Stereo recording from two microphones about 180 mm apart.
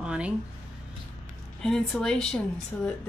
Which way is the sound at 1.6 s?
5° left (ahead or behind).